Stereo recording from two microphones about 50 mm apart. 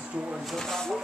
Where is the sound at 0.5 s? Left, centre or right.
Centre.